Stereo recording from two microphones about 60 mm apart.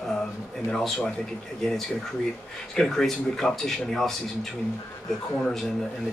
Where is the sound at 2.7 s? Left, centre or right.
Centre.